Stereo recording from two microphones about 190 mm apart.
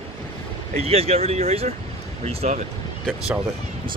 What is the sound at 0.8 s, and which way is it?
Speech, 30° right (ahead or behind).